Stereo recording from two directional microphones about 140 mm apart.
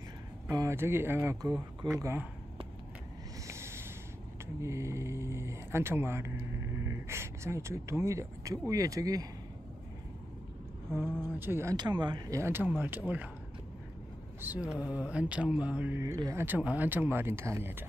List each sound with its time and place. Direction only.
0.5 s speech: 20° right (ahead or behind)
3.4 s a sound: 20° right (ahead or behind)
4.6 s speech: 20° right (ahead or behind)
11.1 s speech: 15° right (ahead or behind)
11.7 s speech: 30° right (ahead or behind)
12.4 s speech: 15° right (ahead or behind)
14.4 s speech: 10° right (ahead or behind)
16.0 s speech: 25° right (ahead or behind)